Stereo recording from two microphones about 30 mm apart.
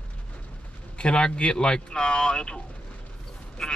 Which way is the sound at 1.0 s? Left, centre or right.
Left.